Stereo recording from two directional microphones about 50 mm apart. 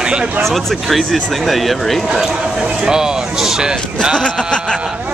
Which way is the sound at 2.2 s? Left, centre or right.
Centre.